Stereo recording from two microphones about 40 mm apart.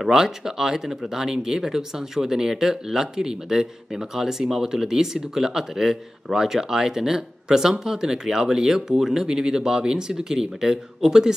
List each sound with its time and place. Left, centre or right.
0.0 s speech: centre